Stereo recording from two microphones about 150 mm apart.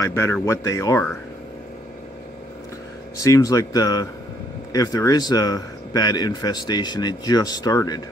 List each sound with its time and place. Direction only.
0.0 s speech: 20° left (ahead or behind)
3.2 s speech: 20° left (ahead or behind)